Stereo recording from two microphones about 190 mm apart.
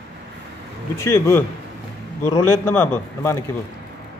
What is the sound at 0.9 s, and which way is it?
A man's voice, 15° left (ahead or behind).